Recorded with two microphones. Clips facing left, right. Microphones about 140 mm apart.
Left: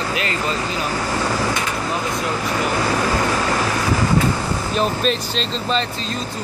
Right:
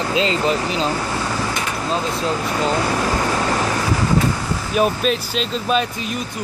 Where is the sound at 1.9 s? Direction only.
25° right (ahead or behind).